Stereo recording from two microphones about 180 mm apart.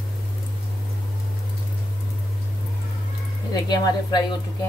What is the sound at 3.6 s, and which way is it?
Speech, 20° left (ahead or behind).